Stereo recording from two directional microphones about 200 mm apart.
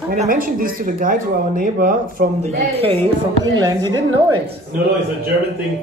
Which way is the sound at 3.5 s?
20° right (ahead or behind).